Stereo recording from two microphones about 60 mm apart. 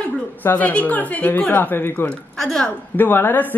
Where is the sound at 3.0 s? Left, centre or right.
Left.